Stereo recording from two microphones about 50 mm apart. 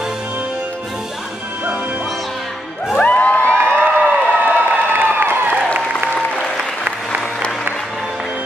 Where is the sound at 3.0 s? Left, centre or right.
Left.